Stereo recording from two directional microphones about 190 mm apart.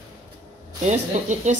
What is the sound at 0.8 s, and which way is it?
Speech, 40° right (ahead or behind).